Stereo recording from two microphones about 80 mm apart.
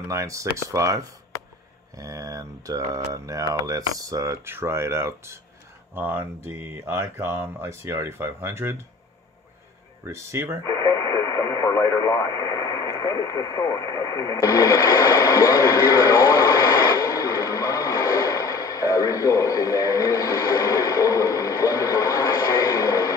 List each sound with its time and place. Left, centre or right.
0.0 s speech: right
2.0 s a sound: right
4.5 s speech: right
10.0 s speech: right
10.6 s speech: left